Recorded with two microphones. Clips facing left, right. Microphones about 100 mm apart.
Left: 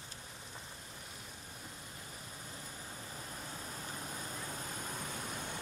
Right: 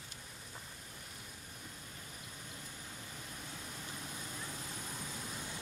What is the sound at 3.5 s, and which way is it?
Vehicle, 40° left (ahead or behind).